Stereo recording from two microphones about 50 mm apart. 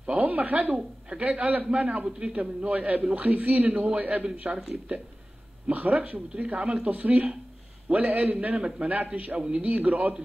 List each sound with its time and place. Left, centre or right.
0.0 s a sound: right
0.7 s a man's voice: right
2.0 s a man's voice: centre
2.7 s a man's voice: right
6.9 s a man's voice: right
8.5 s a man's voice: centre
8.8 s a man's voice: right